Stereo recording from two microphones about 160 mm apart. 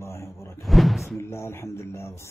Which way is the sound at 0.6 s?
Centre (ahead or behind).